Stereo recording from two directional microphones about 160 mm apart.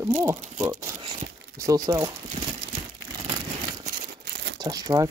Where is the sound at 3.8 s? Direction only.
75° right (ahead or behind).